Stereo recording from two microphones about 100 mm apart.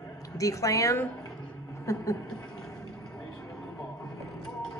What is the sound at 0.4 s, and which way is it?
Speech, 35° left (ahead or behind).